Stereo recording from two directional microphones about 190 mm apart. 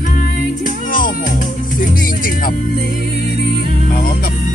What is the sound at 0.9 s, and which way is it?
Music, 45° left (ahead or behind).